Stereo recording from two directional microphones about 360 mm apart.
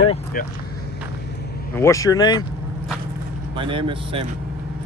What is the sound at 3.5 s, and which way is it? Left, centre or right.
Speech, centre.